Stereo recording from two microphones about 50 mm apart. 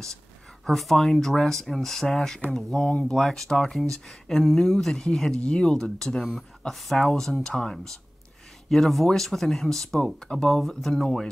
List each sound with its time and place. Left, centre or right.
0.7 s speech: centre